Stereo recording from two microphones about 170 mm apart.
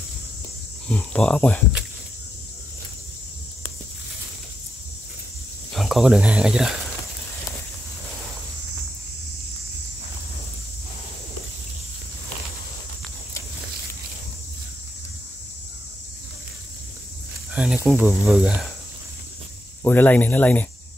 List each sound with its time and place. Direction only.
0.8 s speech: 5° left (ahead or behind)
5.7 s speech: centre (ahead or behind)
17.5 s speech: 5° right (ahead or behind)
19.8 s speech: 10° left (ahead or behind)